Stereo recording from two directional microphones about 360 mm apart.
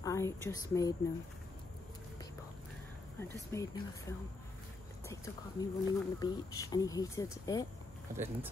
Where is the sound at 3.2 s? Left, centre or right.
Centre.